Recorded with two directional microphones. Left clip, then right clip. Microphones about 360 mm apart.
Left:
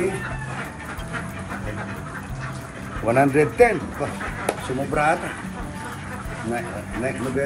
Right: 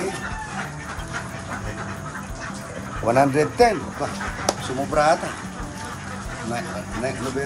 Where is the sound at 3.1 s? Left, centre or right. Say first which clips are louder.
Even; centre.